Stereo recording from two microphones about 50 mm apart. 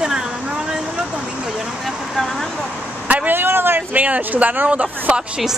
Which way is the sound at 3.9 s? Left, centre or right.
Right.